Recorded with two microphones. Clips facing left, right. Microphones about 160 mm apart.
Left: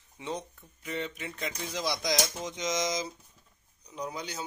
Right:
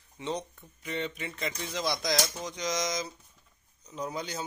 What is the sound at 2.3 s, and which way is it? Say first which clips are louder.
Mantra: left 1 dB; 20° left (ahead or behind).